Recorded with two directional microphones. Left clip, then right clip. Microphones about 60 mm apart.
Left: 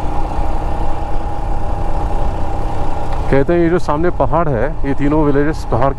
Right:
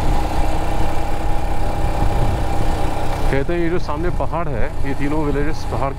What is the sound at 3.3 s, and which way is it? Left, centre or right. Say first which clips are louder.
Speech: left 9 dB; left.